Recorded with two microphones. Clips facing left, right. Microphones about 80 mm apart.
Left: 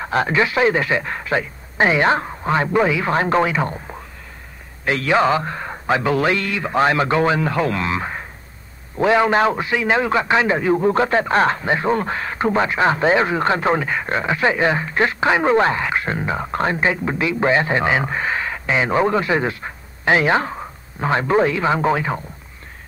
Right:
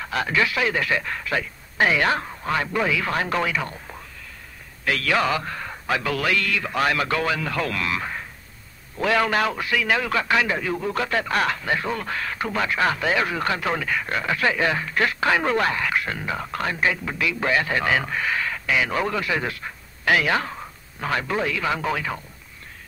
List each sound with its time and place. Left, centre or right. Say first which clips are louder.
0.0 s a man's voice: left 5 dB; left